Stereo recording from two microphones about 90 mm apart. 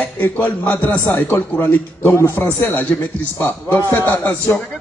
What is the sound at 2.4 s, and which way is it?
A man's voice, 20° left (ahead or behind).